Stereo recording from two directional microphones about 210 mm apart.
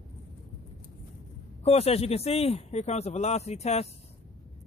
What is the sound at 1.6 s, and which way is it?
Speech, 30° left (ahead or behind).